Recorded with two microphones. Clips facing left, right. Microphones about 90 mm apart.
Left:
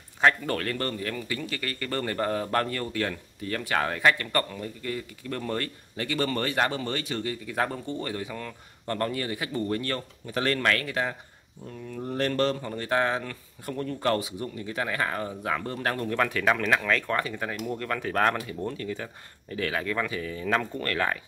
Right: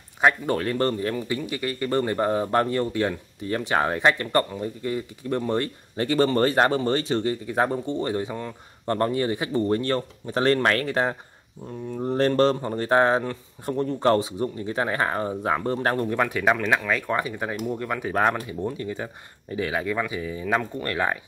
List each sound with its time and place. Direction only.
0.2 s speech: 15° right (ahead or behind)
16.1 s speech: 15° right (ahead or behind)